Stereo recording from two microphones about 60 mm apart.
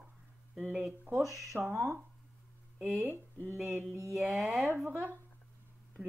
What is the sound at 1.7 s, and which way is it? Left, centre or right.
Speech, right.